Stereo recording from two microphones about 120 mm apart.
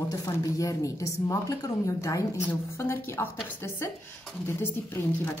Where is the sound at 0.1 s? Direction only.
30° left (ahead or behind).